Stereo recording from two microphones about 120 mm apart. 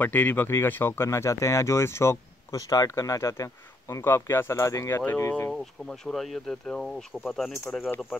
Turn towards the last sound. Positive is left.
turn(degrees=5)  # may be behind; listen again after turning